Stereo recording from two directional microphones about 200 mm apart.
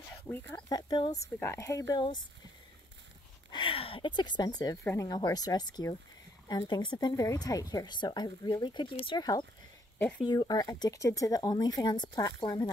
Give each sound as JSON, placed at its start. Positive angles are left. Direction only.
{"t": 0.3, "sound": "speech", "side_deg": 10}
{"t": 3.5, "sound": "speech", "side_deg": 25}
{"t": 9.9, "sound": "speech", "side_deg": 5}
{"t": 10.2, "sound": "speech", "side_deg": 20}